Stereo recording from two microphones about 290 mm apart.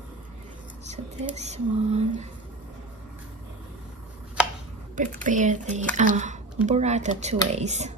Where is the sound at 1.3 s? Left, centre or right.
Right.